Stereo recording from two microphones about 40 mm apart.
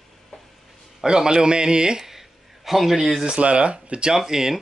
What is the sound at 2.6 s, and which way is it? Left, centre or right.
Speech, centre.